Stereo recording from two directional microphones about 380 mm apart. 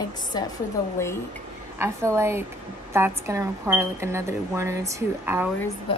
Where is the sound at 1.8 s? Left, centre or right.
Centre.